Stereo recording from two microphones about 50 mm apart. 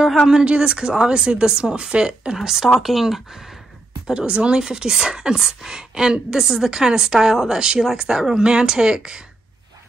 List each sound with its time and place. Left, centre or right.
0.0 s a sound: centre
0.3 s speech: centre
4.1 s speech: right